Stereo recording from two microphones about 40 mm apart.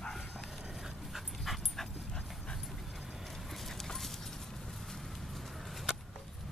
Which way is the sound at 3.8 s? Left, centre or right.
Centre.